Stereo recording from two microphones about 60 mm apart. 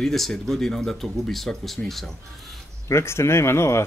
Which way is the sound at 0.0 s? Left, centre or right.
Centre.